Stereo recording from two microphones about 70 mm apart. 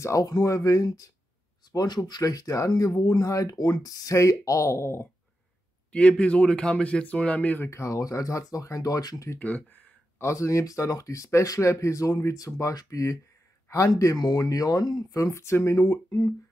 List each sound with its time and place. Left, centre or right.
0.0 s speech: left
1.7 s speech: left
2.8 s speech: left
3.2 s speech: left
3.4 s speech: left
5.9 s speech: centre
7.6 s speech: left
9.4 s speech: left
10.1 s speech: left
14.2 s speech: left